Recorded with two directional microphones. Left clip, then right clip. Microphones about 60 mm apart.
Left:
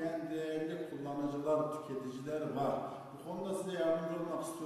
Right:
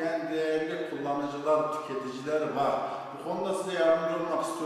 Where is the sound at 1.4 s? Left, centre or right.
Right.